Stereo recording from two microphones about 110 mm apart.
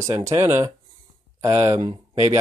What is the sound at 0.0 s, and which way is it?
Speech, 30° right (ahead or behind).